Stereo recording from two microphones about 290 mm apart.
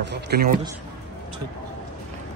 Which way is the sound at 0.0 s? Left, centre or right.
Right.